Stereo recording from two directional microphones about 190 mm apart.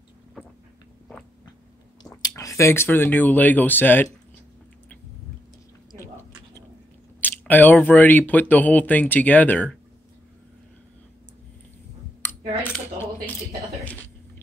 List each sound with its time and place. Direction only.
2.0 s speech: 20° left (ahead or behind)
7.2 s speech: 10° left (ahead or behind)
13.7 s a sound: 10° left (ahead or behind)